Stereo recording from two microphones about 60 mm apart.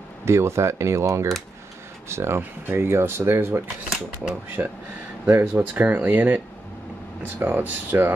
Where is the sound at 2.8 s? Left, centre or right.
Right.